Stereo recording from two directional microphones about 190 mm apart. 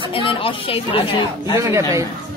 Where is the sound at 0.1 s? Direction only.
30° left (ahead or behind).